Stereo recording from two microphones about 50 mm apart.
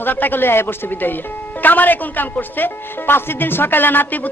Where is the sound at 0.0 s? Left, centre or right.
Left.